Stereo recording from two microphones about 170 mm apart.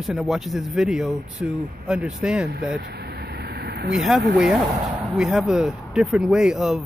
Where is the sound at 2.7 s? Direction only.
70° right (ahead or behind); by 3.9 s 90° right.